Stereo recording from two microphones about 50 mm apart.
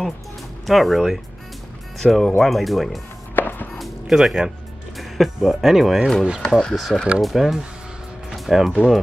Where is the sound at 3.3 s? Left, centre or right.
Left.